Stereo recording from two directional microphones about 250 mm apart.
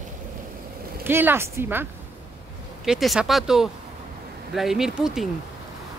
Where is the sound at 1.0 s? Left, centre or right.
Centre.